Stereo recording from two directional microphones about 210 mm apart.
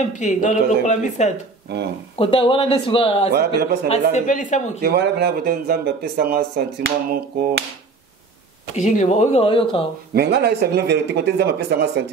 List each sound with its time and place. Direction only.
0.2 s speech: 35° left (ahead or behind)
3.3 s speech: 45° right (ahead or behind)
4.1 s speech: 35° left (ahead or behind)
4.8 s speech: 50° right (ahead or behind)
8.7 s speech: 35° left (ahead or behind)
10.1 s speech: 50° right (ahead or behind)